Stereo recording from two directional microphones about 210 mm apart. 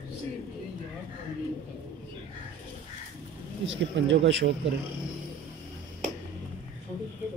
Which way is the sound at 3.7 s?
60° right (ahead or behind).